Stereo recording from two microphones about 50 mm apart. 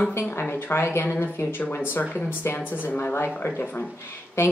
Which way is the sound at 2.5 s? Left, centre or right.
Left.